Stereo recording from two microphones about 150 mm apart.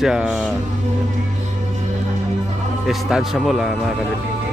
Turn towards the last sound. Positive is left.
turn(degrees=0)  # may be behind; listen again after turning